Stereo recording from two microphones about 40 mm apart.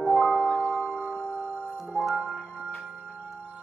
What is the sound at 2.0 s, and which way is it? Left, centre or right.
Music, centre.